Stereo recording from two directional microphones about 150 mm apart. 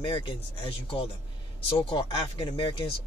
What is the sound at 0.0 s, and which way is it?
Speech, 35° left (ahead or behind).